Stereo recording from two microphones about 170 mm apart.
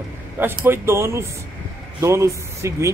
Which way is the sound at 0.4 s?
15° right (ahead or behind).